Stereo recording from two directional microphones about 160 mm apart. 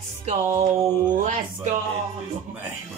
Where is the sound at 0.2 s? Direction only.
45° right (ahead or behind).